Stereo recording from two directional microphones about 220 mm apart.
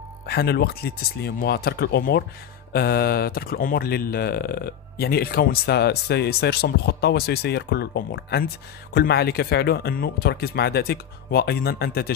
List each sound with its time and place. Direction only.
0.3 s speech: 45° left (ahead or behind)